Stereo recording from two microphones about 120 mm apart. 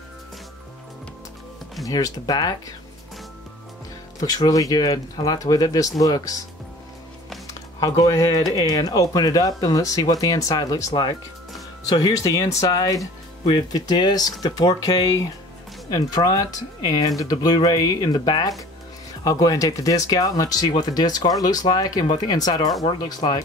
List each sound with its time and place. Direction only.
1.9 s speech: 30° left (ahead or behind)
4.2 s speech: 30° left (ahead or behind)
7.8 s speech: 30° left (ahead or behind)